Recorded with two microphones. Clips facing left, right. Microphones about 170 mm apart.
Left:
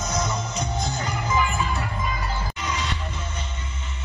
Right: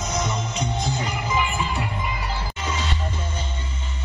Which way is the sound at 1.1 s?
10° right (ahead or behind).